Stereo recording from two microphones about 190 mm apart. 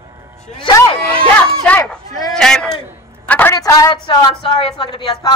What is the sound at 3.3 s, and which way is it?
A woman's voice, 10° left (ahead or behind).